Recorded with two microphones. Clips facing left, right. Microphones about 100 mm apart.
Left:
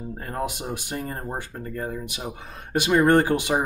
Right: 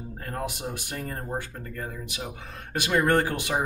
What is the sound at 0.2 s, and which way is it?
Speech, 20° left (ahead or behind).